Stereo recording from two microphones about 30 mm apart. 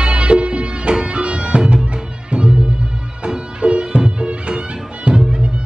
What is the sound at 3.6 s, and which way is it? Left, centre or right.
Music, right.